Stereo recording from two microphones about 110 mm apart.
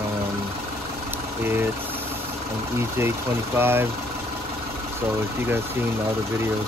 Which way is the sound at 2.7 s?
25° right (ahead or behind).